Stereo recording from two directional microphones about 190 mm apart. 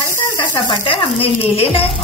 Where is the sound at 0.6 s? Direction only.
30° left (ahead or behind).